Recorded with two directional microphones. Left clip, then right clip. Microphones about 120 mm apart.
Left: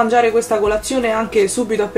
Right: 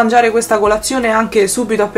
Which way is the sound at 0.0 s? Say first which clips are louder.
Right 3 dB; 25° right (ahead or behind).